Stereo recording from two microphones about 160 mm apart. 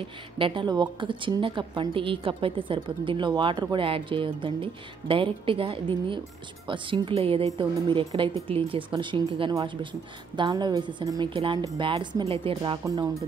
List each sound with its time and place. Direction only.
0.4 s a woman's voice: 30° right (ahead or behind)
12.8 s a woman's voice: 20° right (ahead or behind)